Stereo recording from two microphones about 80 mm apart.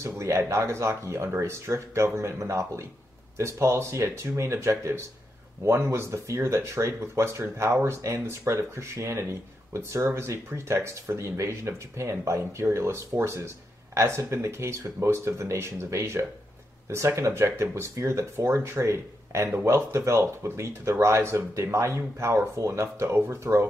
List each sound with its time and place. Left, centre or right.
0.0 s speech: right